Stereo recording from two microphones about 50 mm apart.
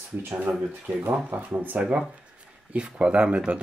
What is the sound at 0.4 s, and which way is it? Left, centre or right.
Speech, right.